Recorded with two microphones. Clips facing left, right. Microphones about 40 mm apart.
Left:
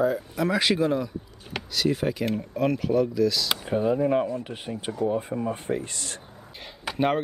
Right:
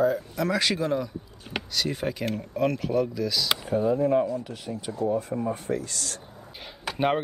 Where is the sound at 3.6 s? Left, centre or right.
Left.